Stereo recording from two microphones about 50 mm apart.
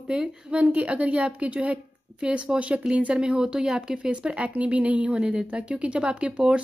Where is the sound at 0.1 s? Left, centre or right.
Right.